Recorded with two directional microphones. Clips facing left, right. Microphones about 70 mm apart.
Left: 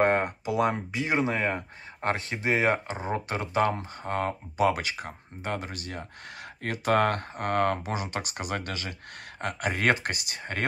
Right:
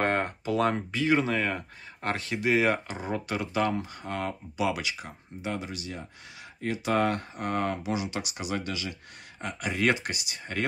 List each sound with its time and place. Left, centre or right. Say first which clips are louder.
0.0 s speech: left 3 dB; centre; by 10.6 s left